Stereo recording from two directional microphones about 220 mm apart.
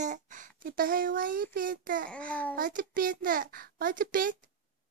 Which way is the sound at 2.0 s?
5° left (ahead or behind).